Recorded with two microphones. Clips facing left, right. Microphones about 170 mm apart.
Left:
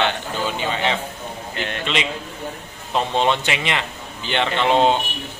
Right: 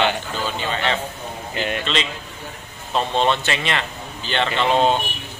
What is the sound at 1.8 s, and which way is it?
Speech, 15° left (ahead or behind).